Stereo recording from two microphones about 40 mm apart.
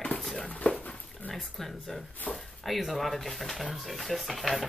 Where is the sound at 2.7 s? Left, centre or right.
Centre.